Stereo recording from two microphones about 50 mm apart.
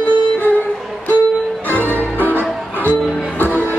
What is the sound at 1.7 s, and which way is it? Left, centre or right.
Music, left.